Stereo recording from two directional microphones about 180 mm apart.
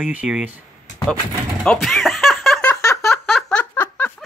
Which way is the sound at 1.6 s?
5° left (ahead or behind).